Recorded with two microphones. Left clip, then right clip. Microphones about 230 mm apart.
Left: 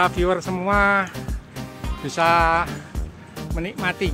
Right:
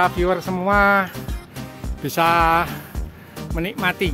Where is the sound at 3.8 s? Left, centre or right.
Right.